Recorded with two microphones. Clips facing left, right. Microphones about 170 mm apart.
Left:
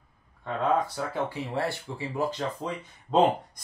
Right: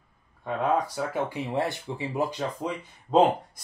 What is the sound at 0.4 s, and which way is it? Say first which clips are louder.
Speech: even; 10° right (ahead or behind).